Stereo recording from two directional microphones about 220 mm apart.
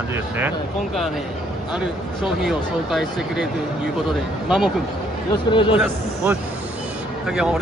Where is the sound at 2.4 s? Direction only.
Centre (ahead or behind).